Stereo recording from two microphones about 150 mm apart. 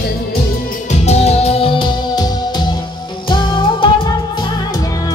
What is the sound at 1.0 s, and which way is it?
Music, 45° left (ahead or behind).